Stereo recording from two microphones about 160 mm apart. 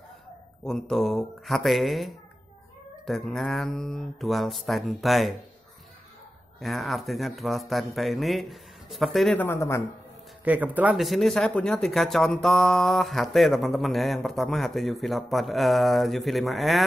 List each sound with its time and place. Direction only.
0.7 s speech: 5° left (ahead or behind)
6.6 s speech: centre (ahead or behind)
9.4 s speech: 15° left (ahead or behind)
10.4 s speech: 10° right (ahead or behind)